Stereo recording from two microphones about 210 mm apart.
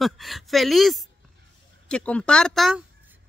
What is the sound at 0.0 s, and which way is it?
Speech, centre (ahead or behind).